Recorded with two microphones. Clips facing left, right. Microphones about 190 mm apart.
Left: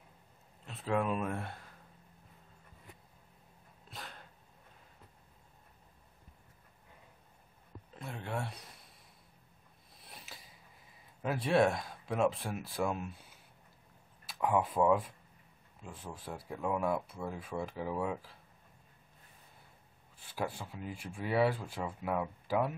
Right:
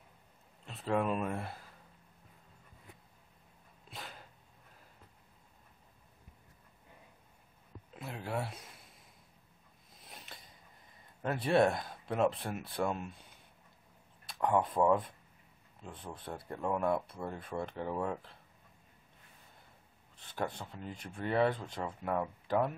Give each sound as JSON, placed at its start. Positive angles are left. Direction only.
{"t": 0.7, "sound": "speech", "side_deg": 0}
{"t": 3.9, "sound": "dog", "side_deg": 0}
{"t": 7.9, "sound": "a sound", "side_deg": 0}
{"t": 9.9, "sound": "a sound", "side_deg": 5}
{"t": 11.2, "sound": "speech", "side_deg": 0}
{"t": 20.2, "sound": "speech", "side_deg": 5}